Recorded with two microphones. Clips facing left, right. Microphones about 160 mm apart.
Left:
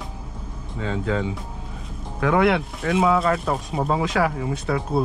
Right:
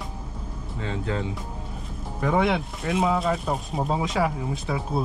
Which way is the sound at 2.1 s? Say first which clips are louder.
Left 4 dB; 80° left.